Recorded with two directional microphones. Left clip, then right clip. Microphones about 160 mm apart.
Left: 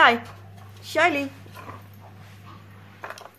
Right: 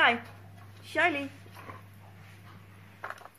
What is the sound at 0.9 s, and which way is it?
Speech, 10° left (ahead or behind).